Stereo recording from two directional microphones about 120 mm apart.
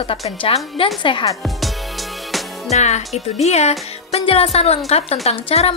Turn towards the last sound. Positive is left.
turn(degrees=55)  # may be behind; listen again after turning